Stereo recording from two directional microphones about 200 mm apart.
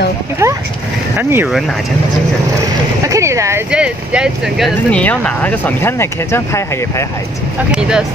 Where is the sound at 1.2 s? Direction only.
10° right (ahead or behind).